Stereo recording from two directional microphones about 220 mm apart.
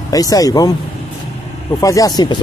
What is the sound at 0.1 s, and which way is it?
Speech, 15° left (ahead or behind).